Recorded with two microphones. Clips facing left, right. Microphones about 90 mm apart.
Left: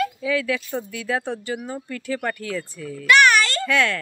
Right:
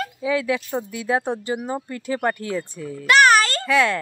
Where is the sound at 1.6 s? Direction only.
35° right (ahead or behind).